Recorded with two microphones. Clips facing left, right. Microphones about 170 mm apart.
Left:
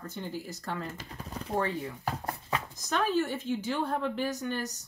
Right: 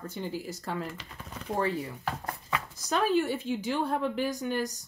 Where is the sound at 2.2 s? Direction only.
30° left (ahead or behind).